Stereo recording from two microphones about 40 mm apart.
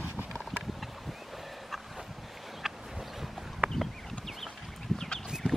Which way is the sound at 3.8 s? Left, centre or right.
Centre.